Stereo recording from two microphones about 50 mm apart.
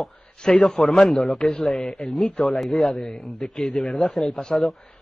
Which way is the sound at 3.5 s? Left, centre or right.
Centre.